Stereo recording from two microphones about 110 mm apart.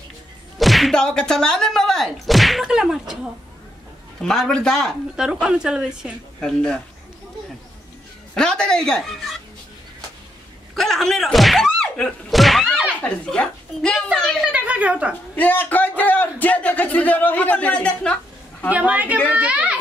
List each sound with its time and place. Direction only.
0.6 s speech: centre (ahead or behind)
4.2 s speech: 5° left (ahead or behind)
5.1 s a woman's voice: 10° right (ahead or behind)
6.4 s a man's voice: 10° left (ahead or behind)
8.4 s speech: 5° left (ahead or behind)
10.7 s a man's voice: centre (ahead or behind)
14.4 s a woman's voice: 10° right (ahead or behind)
15.3 s a man's voice: 15° left (ahead or behind)
18.7 s a woman's voice: 15° right (ahead or behind)